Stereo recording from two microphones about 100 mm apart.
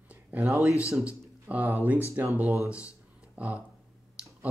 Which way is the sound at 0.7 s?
30° left (ahead or behind).